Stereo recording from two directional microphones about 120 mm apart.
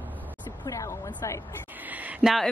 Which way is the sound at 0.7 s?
25° left (ahead or behind).